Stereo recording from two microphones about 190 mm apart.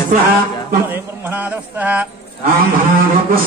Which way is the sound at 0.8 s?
10° right (ahead or behind).